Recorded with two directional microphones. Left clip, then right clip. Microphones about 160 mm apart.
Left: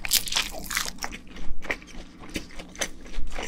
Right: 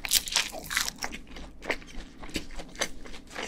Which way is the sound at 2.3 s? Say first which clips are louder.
Left 1 dB; 10° right (ahead or behind).